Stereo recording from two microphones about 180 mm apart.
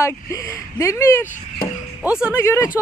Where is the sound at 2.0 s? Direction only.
5° right (ahead or behind).